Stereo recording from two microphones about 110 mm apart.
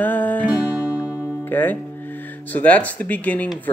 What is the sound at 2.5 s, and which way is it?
Music, 15° left (ahead or behind).